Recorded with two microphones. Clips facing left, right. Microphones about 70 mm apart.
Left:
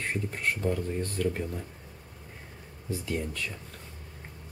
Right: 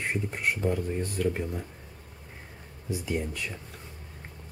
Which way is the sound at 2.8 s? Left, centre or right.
Centre.